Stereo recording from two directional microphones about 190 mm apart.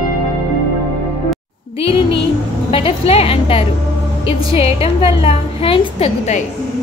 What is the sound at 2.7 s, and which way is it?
A woman's voice, 30° left (ahead or behind).